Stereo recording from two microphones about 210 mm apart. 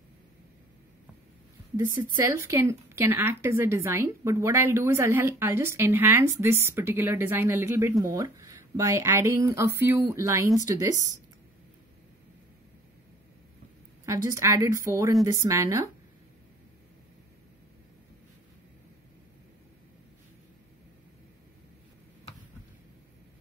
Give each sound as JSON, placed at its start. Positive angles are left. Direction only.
{"t": 2.2, "sound": "a woman's voice", "side_deg": -15}
{"t": 14.0, "sound": "a woman's voice", "side_deg": -15}